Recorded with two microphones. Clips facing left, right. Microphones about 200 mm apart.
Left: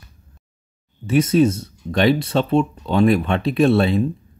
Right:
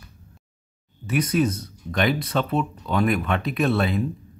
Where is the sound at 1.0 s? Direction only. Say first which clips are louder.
Left 6 dB; 25° left (ahead or behind).